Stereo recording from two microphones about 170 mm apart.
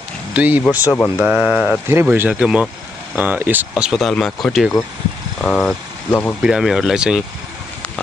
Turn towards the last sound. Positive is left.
turn(degrees=-5)  # may be behind; listen again after turning